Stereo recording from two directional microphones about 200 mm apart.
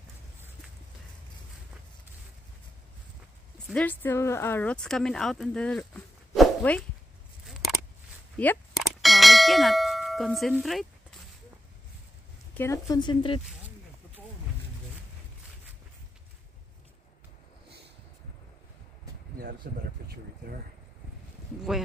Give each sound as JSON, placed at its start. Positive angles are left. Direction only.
{"t": 3.6, "sound": "speech", "side_deg": 5}
{"t": 8.4, "sound": "clang", "side_deg": 5}
{"t": 12.5, "sound": "speech", "side_deg": 15}
{"t": 19.6, "sound": "speech", "side_deg": -50}